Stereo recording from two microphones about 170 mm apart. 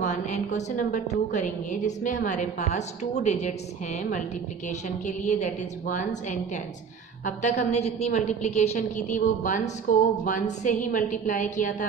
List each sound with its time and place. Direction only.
0.0 s a woman's voice: 45° left (ahead or behind)